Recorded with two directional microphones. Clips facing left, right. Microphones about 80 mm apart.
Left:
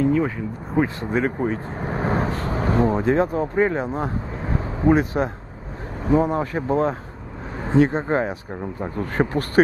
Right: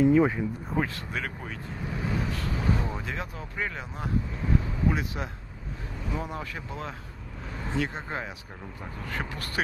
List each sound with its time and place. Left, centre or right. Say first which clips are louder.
0.0 s speech: left 1 dB; centre
0.8 s speech: left 11 dB; left